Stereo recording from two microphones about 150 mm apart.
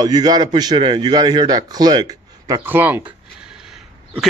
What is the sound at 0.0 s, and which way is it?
A man's voice, 25° right (ahead or behind).